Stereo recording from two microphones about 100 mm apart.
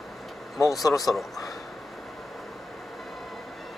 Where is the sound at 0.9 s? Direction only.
Centre (ahead or behind).